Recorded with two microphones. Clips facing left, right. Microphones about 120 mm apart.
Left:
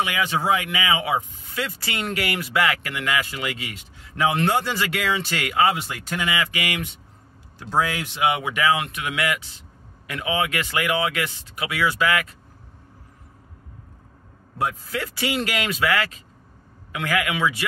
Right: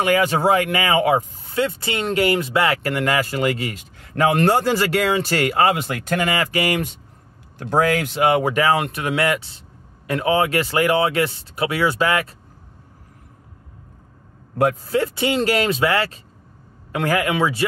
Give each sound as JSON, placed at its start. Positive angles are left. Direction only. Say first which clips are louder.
{"t": 0.0, "sound": "speech", "louder": "right 6 dB", "side_deg": -45}
{"t": 5.8, "sound": "speech", "louder": "right 7 dB", "side_deg": -55}
{"t": 7.5, "sound": "speech", "louder": "right 5 dB", "side_deg": -55}
{"t": 14.9, "sound": "speech", "louder": "right 7 dB", "side_deg": -30}